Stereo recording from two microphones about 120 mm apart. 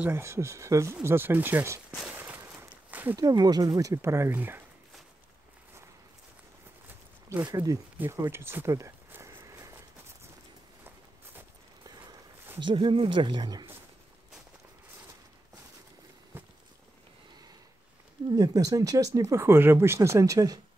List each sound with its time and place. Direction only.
0.0 s speech: 20° right (ahead or behind)
2.0 s a sound: 10° right (ahead or behind)
3.2 s speech: 35° right (ahead or behind); by 4.6 s 15° right (ahead or behind)
6.9 s a sound: 15° right (ahead or behind)
7.4 s speech: 30° right (ahead or behind)
8.0 s a sound: 20° right (ahead or behind)
11.8 s walk: 35° right (ahead or behind)
12.5 s speech: 45° right (ahead or behind)
16.3 s walk: 20° right (ahead or behind)
18.3 s speech: 30° right (ahead or behind)